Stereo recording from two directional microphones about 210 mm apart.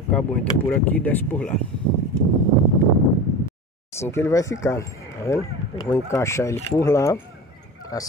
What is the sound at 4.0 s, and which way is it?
Speech, 15° left (ahead or behind).